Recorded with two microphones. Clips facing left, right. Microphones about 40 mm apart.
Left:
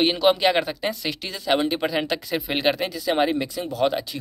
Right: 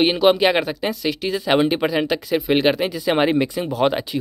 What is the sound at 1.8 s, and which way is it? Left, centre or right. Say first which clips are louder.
Speech: right 4 dB; centre.